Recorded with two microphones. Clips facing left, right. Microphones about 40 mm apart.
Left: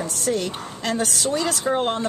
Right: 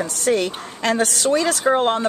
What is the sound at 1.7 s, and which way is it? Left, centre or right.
Speech, right.